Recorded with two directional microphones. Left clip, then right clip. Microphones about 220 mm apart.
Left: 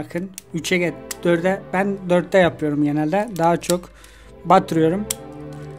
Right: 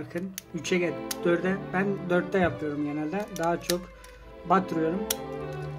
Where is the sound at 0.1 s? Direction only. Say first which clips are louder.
Left 7 dB; 40° left (ahead or behind).